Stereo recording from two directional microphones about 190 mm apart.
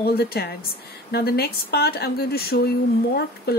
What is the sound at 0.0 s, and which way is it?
Speech, 55° left (ahead or behind).